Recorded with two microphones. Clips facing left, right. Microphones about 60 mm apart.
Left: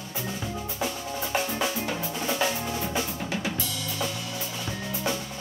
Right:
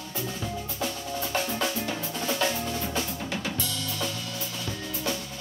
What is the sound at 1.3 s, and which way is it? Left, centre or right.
Drum, centre.